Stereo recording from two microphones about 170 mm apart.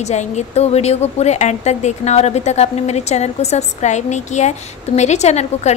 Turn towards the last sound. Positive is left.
turn(degrees=40)  # may be behind; listen again after turning